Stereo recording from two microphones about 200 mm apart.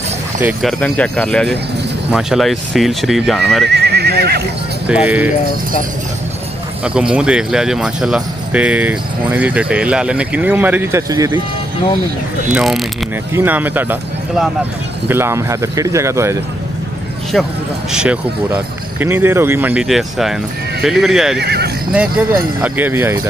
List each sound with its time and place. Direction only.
0.4 s speech: 5° right (ahead or behind)
3.6 s speech: 55° right (ahead or behind)
4.8 s speech: 5° right (ahead or behind)
6.8 s speech: 5° right (ahead or behind)
12.5 s speech: centre (ahead or behind)
17.9 s speech: 5° right (ahead or behind)
21.4 s speech: 55° right (ahead or behind)
22.6 s speech: 10° right (ahead or behind)